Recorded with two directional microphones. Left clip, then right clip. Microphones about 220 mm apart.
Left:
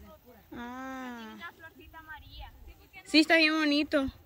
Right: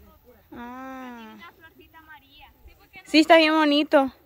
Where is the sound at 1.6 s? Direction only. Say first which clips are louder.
Even; 5° left (ahead or behind).